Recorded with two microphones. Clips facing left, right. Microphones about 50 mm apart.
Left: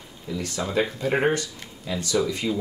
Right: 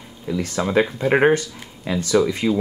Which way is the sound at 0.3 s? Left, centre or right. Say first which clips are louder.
Right 6 dB; right.